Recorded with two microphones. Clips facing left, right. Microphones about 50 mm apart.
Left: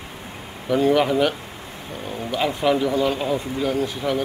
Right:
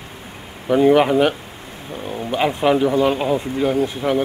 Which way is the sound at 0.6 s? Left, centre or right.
Right.